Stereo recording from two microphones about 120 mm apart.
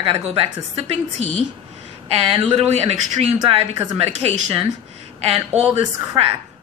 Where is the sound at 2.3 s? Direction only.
50° right (ahead or behind).